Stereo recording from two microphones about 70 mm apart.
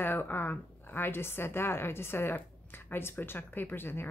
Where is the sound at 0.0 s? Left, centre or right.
Left.